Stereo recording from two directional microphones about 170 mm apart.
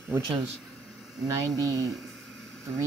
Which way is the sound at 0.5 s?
5° left (ahead or behind).